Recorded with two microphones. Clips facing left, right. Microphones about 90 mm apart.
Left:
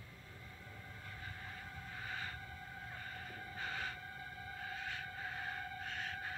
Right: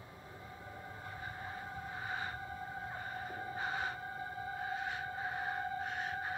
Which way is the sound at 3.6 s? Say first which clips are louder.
Right 5 dB; 20° right (ahead or behind).